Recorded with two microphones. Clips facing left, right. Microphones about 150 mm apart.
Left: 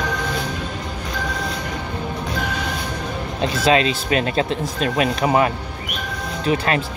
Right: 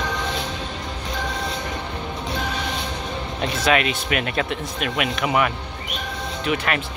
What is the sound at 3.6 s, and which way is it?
Speech, 30° left (ahead or behind).